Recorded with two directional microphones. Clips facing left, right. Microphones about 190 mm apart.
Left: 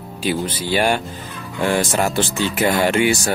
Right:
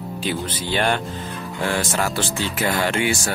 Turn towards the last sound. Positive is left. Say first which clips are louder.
# left 5 dB
turn(degrees=20)  # may be behind; listen again after turning